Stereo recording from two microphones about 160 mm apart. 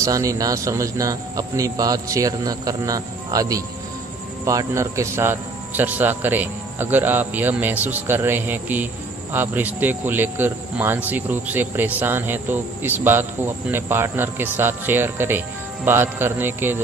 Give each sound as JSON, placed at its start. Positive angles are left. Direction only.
{"t": 0.0, "sound": "speech", "side_deg": -20}